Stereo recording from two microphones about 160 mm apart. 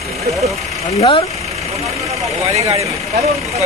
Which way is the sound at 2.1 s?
40° right (ahead or behind).